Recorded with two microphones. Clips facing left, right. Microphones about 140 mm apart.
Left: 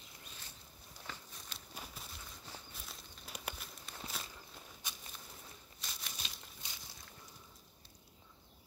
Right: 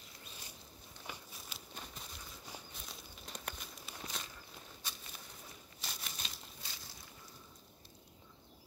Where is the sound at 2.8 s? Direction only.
5° left (ahead or behind).